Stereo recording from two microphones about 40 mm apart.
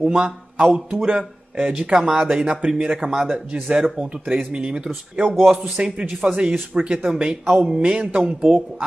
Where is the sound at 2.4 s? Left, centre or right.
Right.